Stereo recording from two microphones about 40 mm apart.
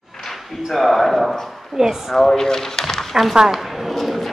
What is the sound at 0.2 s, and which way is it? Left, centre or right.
Speech, centre.